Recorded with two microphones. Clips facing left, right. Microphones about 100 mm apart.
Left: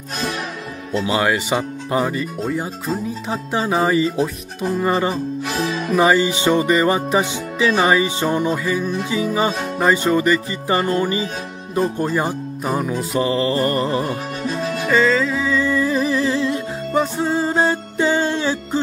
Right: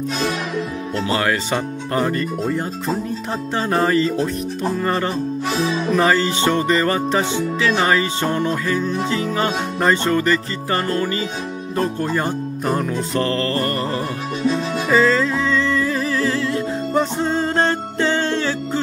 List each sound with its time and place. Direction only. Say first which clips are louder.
1.0 s speech: left 1 dB; 15° left (ahead or behind)
13.7 s music: left 3 dB; 20° left (ahead or behind)
14.0 s music: right 2 dB; 50° left (ahead or behind)
14.9 s music: right 1 dB; centre (ahead or behind); by 16.6 s 20° left (ahead or behind)
16.9 s music: left 1 dB; 5° left (ahead or behind)